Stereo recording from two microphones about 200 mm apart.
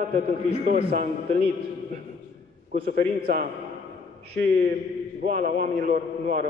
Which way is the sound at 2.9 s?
45° right (ahead or behind).